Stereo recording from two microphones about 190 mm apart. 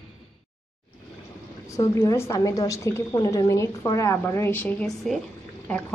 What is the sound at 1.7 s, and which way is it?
A woman's voice, 15° left (ahead or behind).